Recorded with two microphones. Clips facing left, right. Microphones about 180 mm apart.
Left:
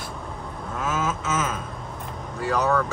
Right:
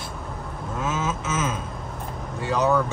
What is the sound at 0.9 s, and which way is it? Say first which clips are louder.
Speech: left 2 dB; 25° right (ahead or behind).